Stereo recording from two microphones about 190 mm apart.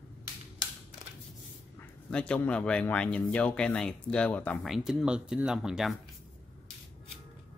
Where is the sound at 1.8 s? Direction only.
5° left (ahead or behind).